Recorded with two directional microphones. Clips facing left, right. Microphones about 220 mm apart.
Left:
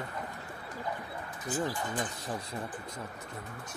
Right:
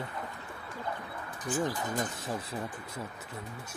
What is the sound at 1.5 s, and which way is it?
Speech, 15° right (ahead or behind).